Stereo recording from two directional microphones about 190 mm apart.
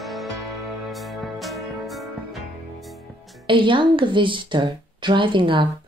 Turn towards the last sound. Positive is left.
turn(degrees=-25)  # may be behind; listen again after turning